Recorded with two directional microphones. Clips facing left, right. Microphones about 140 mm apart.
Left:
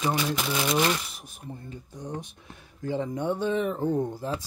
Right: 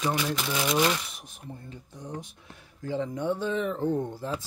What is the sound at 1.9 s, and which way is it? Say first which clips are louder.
Speech: left 2 dB; 20° left (ahead or behind).